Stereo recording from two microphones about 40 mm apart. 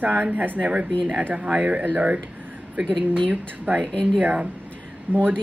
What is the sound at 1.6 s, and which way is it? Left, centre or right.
Speech, right.